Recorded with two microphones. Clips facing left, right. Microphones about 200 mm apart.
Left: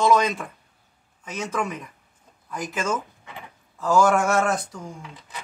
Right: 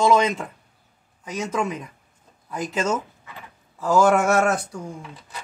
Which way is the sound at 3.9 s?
20° right (ahead or behind).